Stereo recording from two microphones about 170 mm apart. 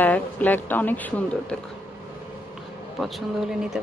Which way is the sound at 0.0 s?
10° left (ahead or behind).